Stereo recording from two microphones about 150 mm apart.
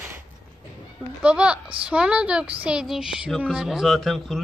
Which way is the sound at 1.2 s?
5° right (ahead or behind).